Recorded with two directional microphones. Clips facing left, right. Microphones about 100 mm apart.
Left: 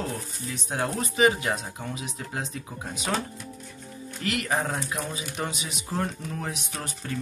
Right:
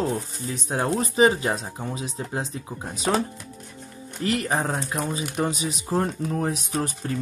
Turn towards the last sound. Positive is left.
turn(degrees=-35)  # may be behind; listen again after turning